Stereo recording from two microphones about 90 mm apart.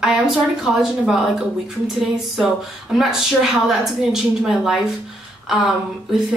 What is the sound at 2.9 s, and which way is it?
A woman's voice, 5° right (ahead or behind).